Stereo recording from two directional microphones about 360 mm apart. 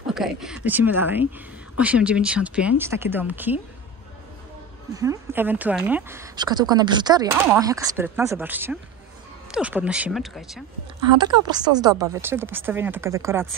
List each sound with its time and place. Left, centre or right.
0.0 s speech: centre
4.9 s speech: centre
11.1 s speech: centre